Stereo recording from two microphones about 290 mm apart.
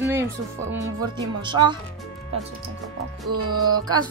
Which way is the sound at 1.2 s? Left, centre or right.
Centre.